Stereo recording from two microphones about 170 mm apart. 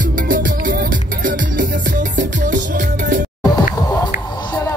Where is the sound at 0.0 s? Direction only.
55° right (ahead or behind).